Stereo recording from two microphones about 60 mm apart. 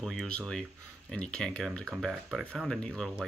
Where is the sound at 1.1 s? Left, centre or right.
Centre.